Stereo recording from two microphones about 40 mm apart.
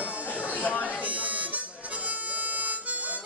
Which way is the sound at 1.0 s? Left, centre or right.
Right.